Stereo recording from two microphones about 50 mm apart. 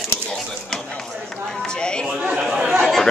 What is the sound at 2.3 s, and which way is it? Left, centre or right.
Speech, centre.